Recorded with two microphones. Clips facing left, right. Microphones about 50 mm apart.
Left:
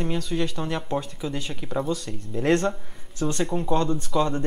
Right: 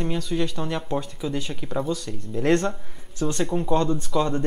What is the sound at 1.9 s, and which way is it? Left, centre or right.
Speech, left.